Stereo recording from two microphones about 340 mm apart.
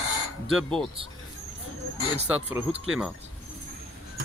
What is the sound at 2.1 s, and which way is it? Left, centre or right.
Speech, centre.